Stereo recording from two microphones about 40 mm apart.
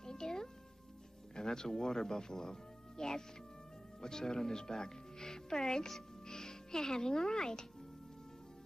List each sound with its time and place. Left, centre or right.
0.0 s music: centre
1.3 s speech: centre